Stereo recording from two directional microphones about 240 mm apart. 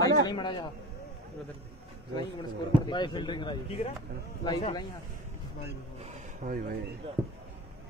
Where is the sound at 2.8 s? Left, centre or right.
Centre.